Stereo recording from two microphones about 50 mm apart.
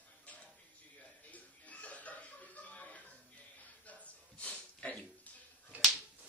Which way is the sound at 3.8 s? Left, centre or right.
Left.